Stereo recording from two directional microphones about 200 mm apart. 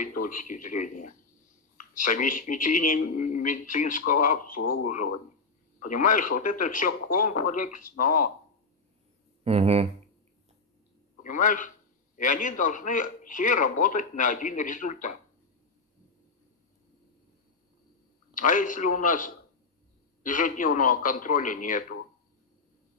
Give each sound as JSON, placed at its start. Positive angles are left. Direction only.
{"t": 0.0, "sound": "a man's voice", "side_deg": 45}
{"t": 9.4, "sound": "speech", "side_deg": -30}
{"t": 11.2, "sound": "a man's voice", "side_deg": 40}
{"t": 18.3, "sound": "a man's voice", "side_deg": 40}